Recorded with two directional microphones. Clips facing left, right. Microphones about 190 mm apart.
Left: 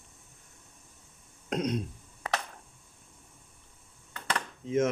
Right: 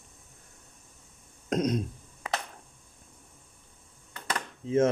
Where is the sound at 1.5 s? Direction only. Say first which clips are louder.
Right 3 dB; 45° right (ahead or behind).